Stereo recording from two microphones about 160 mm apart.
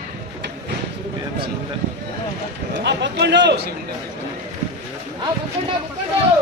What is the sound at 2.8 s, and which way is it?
Speech, 90° right.